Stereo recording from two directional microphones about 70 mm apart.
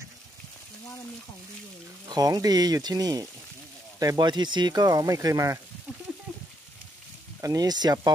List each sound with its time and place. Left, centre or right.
2.0 s speech: right
4.0 s speech: right
6.3 s frying: centre
7.4 s speech: right